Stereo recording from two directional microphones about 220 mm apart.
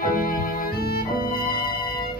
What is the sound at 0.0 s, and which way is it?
Music, 40° left (ahead or behind).